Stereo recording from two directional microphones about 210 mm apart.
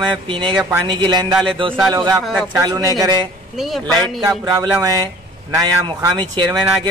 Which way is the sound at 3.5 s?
Centre (ahead or behind).